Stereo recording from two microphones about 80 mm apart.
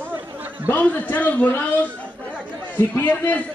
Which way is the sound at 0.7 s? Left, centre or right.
Centre.